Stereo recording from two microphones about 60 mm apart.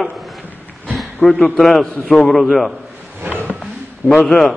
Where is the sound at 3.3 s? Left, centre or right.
Left.